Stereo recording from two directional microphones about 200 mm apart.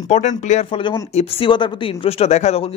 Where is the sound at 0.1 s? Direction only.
35° left (ahead or behind).